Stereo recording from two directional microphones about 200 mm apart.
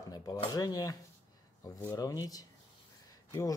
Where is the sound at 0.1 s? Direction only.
20° left (ahead or behind).